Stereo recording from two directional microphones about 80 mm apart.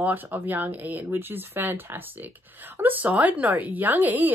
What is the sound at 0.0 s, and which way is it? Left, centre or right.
Speech, right.